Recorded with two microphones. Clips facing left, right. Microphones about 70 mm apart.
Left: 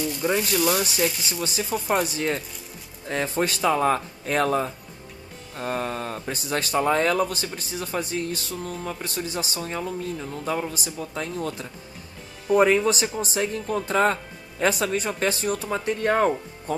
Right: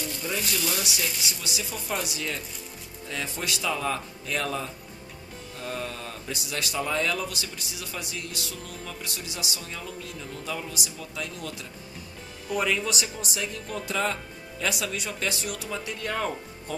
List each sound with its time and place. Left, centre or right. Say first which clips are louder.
0.2 s speech: left 8 dB; left